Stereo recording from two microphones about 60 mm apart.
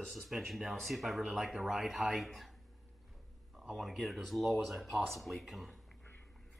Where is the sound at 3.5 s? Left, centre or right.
Centre.